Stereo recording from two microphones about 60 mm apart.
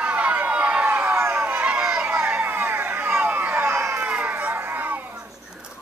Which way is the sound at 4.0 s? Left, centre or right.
Right.